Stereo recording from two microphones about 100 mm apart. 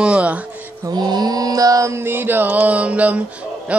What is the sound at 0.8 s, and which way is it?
Music, 45° right (ahead or behind).